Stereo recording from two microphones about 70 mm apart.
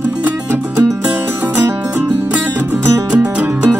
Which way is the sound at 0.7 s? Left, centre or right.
Right.